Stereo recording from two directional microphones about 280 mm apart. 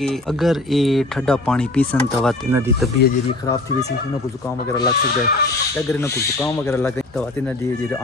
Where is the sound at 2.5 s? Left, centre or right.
Centre.